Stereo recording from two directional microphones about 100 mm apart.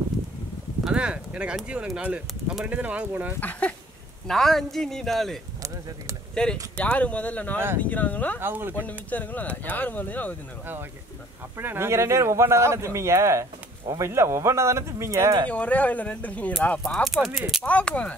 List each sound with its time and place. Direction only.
0.8 s speech: 10° right (ahead or behind)
3.3 s speech: 15° left (ahead or behind)
4.3 s a man's voice: 5° left (ahead or behind)
8.4 s a man's voice: 20° right (ahead or behind)
8.7 s speech: 15° left (ahead or behind)
11.5 s a man's voice: 25° right (ahead or behind)
15.5 s a man's voice: 15° left (ahead or behind); by 17.6 s 5° right (ahead or behind)
17.6 s speech: 15° left (ahead or behind)